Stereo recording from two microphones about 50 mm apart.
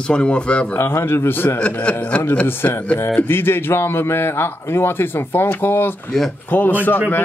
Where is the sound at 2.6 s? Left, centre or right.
Left.